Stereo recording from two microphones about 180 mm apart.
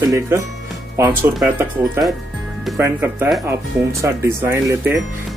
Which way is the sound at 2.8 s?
10° right (ahead or behind).